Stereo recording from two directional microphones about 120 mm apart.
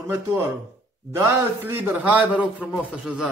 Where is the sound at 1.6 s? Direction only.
20° right (ahead or behind).